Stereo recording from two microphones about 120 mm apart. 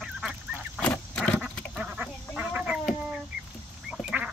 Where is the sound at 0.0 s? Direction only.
5° right (ahead or behind).